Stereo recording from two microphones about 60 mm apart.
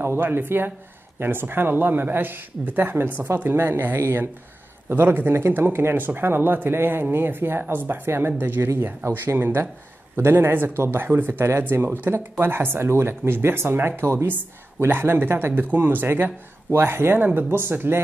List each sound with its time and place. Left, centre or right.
0.0 s speech: right